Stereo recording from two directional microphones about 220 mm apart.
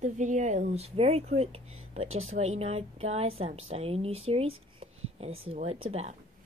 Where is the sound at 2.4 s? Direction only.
30° right (ahead or behind).